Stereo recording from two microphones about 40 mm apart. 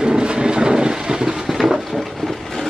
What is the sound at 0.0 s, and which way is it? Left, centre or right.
Train, right.